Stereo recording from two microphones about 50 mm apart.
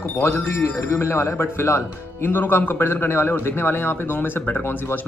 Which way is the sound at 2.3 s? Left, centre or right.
Left.